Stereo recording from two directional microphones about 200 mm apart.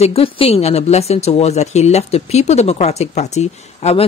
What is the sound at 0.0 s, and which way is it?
A woman's voice, 30° left (ahead or behind).